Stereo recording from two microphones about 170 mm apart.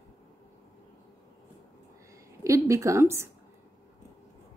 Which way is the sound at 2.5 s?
20° right (ahead or behind).